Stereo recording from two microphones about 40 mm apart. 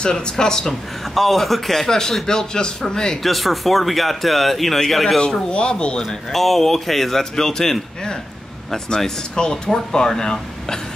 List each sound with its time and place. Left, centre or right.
0.0 s speech: centre
1.1 s speech: centre
3.2 s speech: centre
5.2 s speech: left
6.0 s speech: centre